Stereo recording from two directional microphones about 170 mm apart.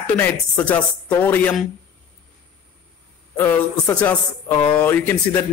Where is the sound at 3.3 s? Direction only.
10° left (ahead or behind).